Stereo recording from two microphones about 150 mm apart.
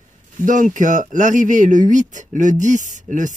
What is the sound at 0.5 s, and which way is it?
Speech, 60° right (ahead or behind).